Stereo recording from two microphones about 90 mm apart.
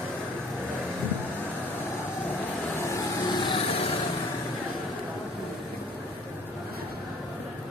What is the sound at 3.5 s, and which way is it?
Lawn mower, 90° left.